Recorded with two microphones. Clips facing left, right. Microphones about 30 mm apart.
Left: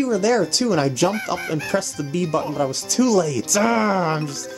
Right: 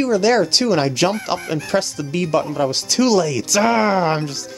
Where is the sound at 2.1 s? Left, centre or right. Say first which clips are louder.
Right 3 dB; right.